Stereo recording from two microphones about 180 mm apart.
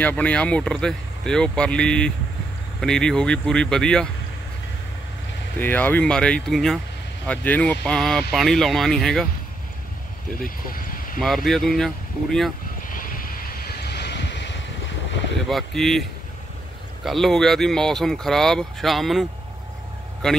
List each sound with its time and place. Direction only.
0.0 s speech: 10° left (ahead or behind)
5.6 s speech: 10° left (ahead or behind)
10.4 s a sound: 50° left (ahead or behind)
11.1 s speech: centre (ahead or behind)
12.8 s vehicle: 50° left (ahead or behind); by 14.6 s 80° left
15.4 s speech: centre (ahead or behind)
20.2 s speech: 5° left (ahead or behind)